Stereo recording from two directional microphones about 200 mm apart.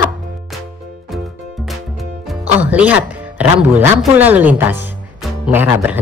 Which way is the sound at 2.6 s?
10° right (ahead or behind).